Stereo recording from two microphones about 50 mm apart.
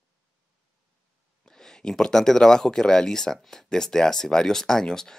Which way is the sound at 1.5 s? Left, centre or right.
Centre.